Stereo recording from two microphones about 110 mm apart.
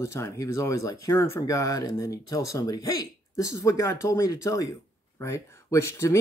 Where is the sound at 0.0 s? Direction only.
25° left (ahead or behind).